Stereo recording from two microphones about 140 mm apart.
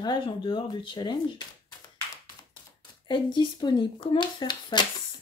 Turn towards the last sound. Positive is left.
turn(degrees=30)  # may be behind; listen again after turning